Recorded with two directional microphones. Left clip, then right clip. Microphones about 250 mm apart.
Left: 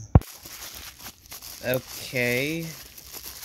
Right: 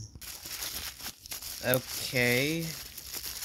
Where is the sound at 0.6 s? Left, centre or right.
Right.